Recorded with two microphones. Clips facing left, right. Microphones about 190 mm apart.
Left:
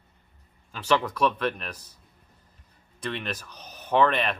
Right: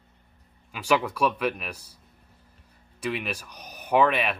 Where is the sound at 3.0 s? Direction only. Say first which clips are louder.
Right 2 dB; 10° right (ahead or behind).